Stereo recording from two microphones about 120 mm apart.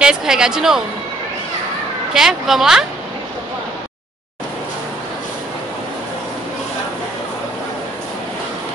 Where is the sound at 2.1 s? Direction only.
5° right (ahead or behind).